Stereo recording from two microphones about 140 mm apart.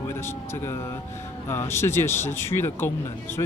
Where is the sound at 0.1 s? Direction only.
15° left (ahead or behind).